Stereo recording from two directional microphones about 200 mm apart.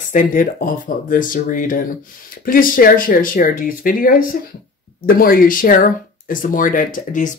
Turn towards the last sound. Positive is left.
turn(degrees=40)  # may be behind; listen again after turning